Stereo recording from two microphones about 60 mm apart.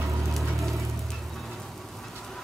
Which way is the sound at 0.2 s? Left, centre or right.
Centre.